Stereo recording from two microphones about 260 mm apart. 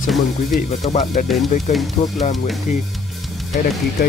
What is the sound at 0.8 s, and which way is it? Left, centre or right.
Speech, left.